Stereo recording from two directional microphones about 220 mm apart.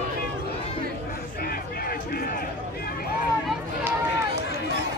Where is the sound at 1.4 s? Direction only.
40° left (ahead or behind).